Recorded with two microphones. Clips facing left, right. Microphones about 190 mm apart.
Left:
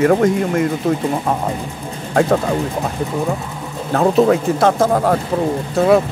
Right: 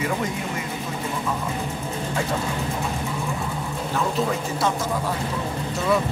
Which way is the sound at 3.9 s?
60° left (ahead or behind).